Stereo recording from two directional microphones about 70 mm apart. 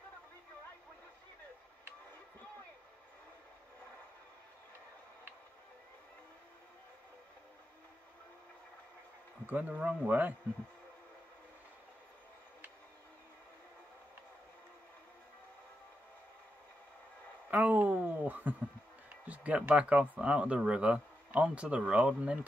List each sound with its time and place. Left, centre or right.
9.5 s speech: right
17.5 s a sound: right
19.2 s speech: centre